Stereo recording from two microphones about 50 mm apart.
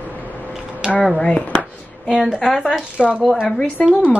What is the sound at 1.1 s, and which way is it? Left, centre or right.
Speech, left.